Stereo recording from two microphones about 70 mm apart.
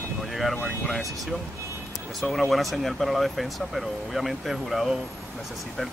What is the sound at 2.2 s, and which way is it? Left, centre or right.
Speech, centre.